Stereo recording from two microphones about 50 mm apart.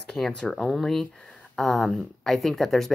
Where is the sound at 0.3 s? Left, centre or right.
Centre.